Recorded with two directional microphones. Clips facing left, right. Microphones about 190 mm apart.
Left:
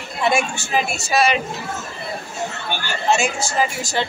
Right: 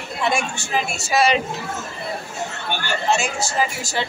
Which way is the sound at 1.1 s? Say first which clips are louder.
Even; 30° right (ahead or behind).